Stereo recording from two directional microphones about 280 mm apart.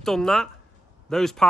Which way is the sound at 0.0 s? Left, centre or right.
Centre.